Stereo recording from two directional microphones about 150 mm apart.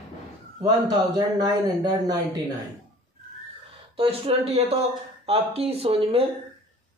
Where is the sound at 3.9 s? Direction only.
40° right (ahead or behind).